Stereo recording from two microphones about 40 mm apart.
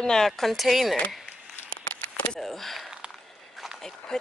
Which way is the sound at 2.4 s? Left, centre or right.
Centre.